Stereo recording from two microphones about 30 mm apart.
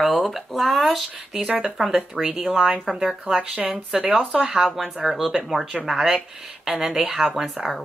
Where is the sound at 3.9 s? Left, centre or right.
Centre.